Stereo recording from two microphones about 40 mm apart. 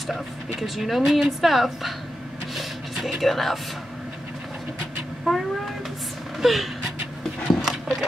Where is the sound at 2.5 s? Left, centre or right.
Centre.